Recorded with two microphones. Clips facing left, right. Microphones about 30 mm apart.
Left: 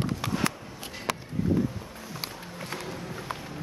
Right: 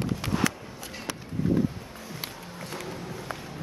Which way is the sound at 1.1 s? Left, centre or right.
Left.